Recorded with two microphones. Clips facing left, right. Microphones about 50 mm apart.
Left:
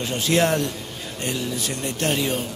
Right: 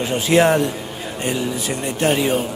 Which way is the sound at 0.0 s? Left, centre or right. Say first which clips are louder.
Right 5 dB; centre.